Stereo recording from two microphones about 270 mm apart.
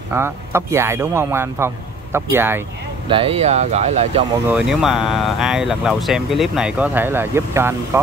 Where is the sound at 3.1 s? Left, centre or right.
Centre.